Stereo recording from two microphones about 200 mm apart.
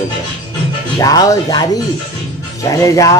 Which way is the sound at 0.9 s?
15° left (ahead or behind).